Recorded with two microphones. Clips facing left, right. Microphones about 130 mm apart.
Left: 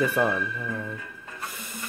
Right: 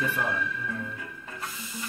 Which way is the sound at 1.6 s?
55° left (ahead or behind).